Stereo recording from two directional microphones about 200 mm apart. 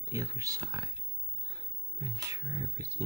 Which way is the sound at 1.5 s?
20° right (ahead or behind).